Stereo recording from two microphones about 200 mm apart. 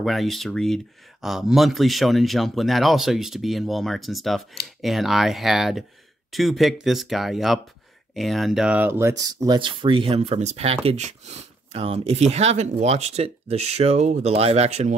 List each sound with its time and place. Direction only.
0.0 s a man's voice: centre (ahead or behind); by 15.0 s 35° right (ahead or behind)